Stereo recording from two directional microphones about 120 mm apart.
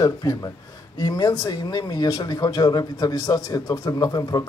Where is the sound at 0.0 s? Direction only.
30° left (ahead or behind).